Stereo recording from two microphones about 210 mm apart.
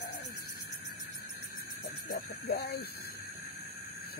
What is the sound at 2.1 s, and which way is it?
Speech, 45° left (ahead or behind).